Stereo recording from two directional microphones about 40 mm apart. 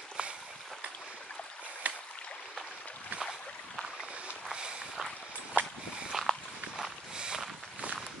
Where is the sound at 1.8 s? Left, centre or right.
Right.